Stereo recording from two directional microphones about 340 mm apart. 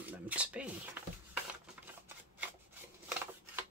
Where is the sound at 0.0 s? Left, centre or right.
Centre.